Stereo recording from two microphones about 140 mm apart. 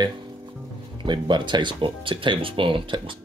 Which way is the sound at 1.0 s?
35° right (ahead or behind).